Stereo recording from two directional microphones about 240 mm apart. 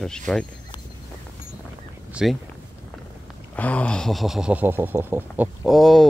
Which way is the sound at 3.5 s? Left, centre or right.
Centre.